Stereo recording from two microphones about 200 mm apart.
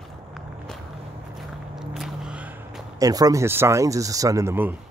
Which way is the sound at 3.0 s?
20° right (ahead or behind).